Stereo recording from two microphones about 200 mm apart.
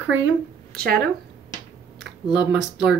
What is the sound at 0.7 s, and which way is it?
Speech, 50° right (ahead or behind).